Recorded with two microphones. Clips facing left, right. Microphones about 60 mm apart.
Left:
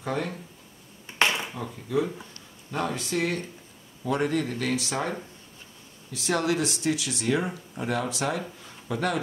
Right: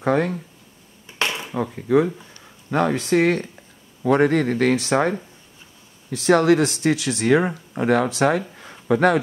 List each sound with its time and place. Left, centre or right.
0.0 s speech: right
1.5 s speech: right